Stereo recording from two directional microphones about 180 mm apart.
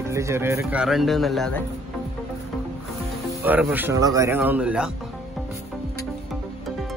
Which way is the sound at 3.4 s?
10° right (ahead or behind).